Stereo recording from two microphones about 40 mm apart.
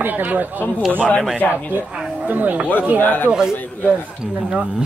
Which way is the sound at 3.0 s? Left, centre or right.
Left.